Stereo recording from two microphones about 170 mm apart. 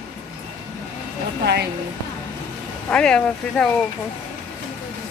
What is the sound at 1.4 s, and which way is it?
Speech, 75° right (ahead or behind).